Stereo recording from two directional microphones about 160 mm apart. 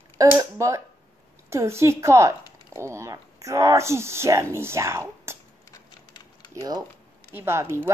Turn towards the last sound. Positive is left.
turn(degrees=-15)  # may be behind; listen again after turning